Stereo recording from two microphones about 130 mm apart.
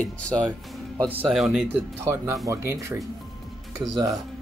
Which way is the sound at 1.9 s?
20° right (ahead or behind).